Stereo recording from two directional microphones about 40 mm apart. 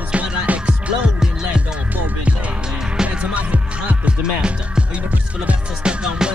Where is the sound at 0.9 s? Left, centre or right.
Right.